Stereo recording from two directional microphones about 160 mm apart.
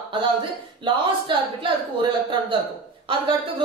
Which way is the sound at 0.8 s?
30° right (ahead or behind).